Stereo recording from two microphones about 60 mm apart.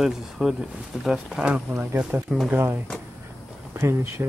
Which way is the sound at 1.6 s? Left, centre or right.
Right.